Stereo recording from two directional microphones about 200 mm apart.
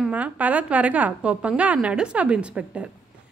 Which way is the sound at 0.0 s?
5° right (ahead or behind).